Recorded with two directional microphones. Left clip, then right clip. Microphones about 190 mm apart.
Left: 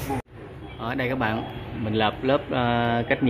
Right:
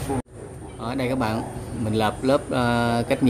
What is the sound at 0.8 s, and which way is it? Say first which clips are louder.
Speech: right 1 dB; 10° right (ahead or behind).